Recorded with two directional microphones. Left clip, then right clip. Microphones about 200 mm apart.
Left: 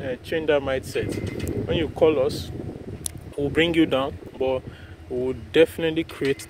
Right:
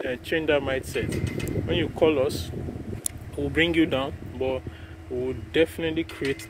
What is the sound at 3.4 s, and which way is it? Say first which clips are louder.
Speech: left 2 dB; 25° left (ahead or behind).